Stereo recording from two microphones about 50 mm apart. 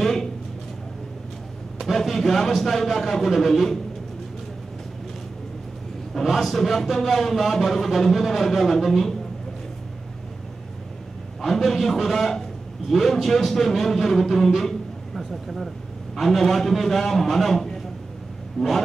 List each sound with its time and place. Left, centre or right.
0.0 s speech: centre
1.8 s speech: centre
6.2 s speech: centre
11.4 s speech: centre